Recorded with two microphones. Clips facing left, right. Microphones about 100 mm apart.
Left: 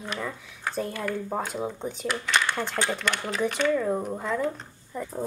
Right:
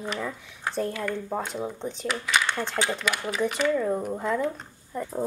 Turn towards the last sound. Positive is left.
turn(degrees=0)  # may be behind; listen again after turning